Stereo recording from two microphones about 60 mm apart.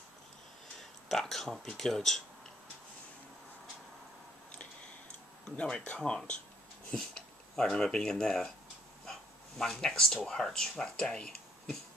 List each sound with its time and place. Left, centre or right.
1.0 s speech: centre
5.6 s speech: centre
7.0 s a sound: centre
7.7 s speech: centre
9.0 s a sound: centre
10.1 s speech: centre